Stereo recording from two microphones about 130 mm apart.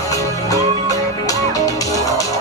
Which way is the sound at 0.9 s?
25° left (ahead or behind).